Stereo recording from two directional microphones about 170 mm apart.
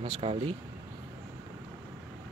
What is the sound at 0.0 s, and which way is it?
Speech, 35° right (ahead or behind).